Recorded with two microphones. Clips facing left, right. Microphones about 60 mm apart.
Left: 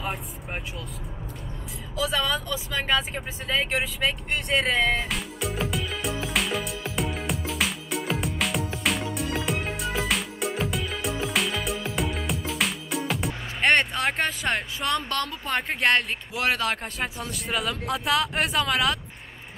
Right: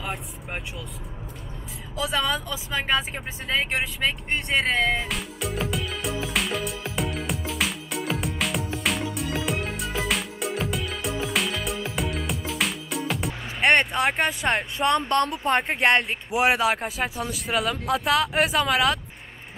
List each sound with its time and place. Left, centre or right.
0.0 s speech: centre
2.2 s speech: right
2.9 s vehicle: centre
13.6 s a sound: centre
15.0 s speech: right
15.7 s speech: centre